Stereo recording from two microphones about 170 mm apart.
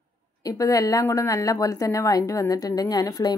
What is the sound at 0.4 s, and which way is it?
A woman's voice, 20° left (ahead or behind).